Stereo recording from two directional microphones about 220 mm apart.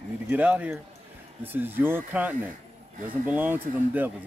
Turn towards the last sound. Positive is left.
turn(degrees=-10)  # may be behind; listen again after turning